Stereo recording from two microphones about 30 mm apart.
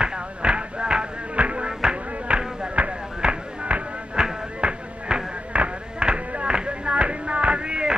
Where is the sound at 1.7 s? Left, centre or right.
Right.